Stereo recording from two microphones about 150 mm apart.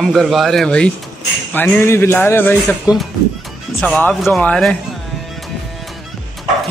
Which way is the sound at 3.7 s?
10° left (ahead or behind).